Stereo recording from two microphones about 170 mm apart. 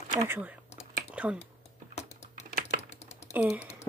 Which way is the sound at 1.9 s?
40° left (ahead or behind).